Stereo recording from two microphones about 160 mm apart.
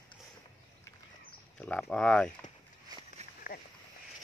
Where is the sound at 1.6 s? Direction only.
5° left (ahead or behind).